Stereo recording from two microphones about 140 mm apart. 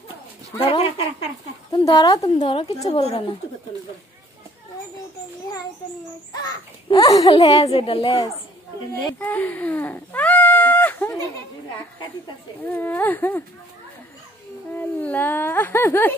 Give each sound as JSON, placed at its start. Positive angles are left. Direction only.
{"t": 0.7, "sound": "speech", "side_deg": 45}
{"t": 1.7, "sound": "a child's voice", "side_deg": 30}
{"t": 2.3, "sound": "speech", "side_deg": 45}
{"t": 6.4, "sound": "a child's voice", "side_deg": 25}
{"t": 7.3, "sound": "a woman's voice", "side_deg": 45}
{"t": 9.2, "sound": "speech", "side_deg": 10}
{"t": 12.6, "sound": "speech", "side_deg": 15}
{"t": 14.7, "sound": "speech", "side_deg": 15}